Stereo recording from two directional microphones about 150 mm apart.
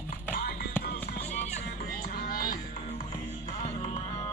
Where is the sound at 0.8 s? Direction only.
90° left.